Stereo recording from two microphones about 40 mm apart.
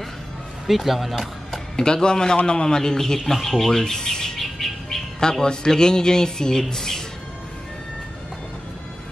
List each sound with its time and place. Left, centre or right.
0.7 s speech: centre
1.8 s speech: centre
5.4 s speech: centre
6.7 s music: centre